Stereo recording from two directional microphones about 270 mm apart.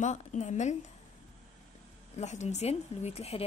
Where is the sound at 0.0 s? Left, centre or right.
Left.